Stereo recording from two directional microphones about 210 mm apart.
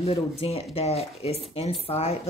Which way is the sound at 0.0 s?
30° left (ahead or behind).